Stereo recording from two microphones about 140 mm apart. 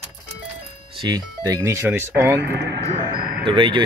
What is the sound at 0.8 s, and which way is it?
Speech, 30° right (ahead or behind).